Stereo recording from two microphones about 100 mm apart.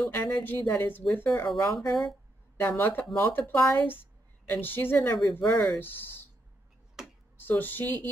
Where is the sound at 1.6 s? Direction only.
35° left (ahead or behind).